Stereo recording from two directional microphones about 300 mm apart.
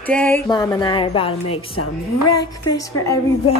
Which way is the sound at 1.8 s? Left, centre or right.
Left.